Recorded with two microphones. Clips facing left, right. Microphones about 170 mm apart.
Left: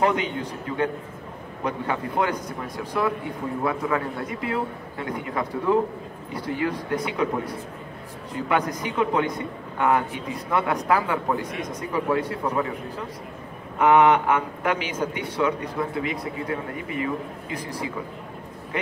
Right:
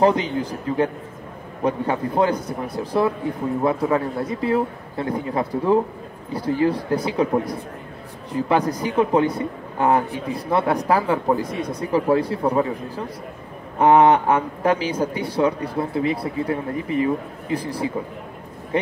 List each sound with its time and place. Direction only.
0.0 s speech: 35° right (ahead or behind)